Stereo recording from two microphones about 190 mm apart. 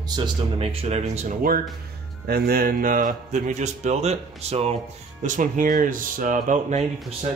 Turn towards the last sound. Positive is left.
turn(degrees=-40)  # may be behind; listen again after turning